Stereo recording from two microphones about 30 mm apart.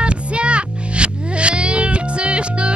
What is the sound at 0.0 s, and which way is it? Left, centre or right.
Music, right.